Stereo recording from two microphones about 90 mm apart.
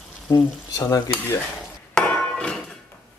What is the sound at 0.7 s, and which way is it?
Stir, 40° left (ahead or behind).